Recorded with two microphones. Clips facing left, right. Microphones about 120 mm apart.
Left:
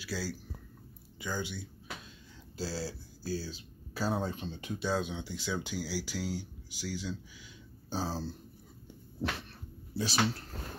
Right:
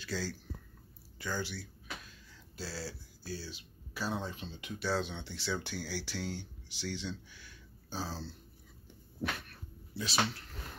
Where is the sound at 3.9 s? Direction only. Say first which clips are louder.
Left 4 dB; 40° left (ahead or behind).